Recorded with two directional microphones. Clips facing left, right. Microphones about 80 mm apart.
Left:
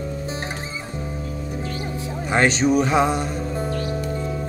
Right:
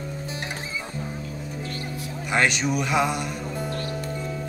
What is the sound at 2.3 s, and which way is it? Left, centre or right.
Music, left.